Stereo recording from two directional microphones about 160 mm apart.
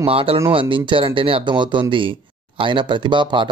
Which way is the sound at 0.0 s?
35° right (ahead or behind).